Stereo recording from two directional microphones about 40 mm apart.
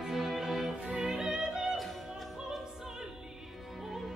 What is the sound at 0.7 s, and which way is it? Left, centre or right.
Music, right.